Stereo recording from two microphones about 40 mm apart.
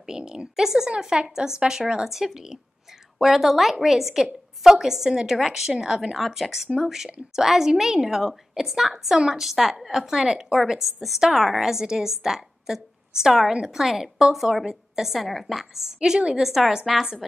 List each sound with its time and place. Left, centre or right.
0.0 s a woman's voice: centre
2.0 s a woman's voice: centre
6.1 s a woman's voice: centre; by 10.6 s right
10.7 s a woman's voice: centre
15.1 s a woman's voice: centre